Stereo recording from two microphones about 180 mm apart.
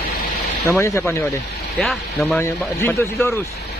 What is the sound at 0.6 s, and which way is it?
Speech, 15° left (ahead or behind).